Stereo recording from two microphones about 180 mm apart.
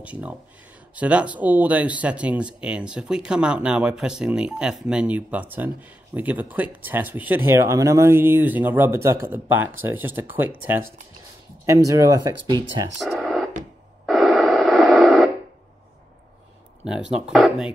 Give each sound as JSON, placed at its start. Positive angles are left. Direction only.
{"t": 0.0, "sound": "speech", "side_deg": -5}
{"t": 13.0, "sound": "radio", "side_deg": 0}
{"t": 16.8, "sound": "speech", "side_deg": -5}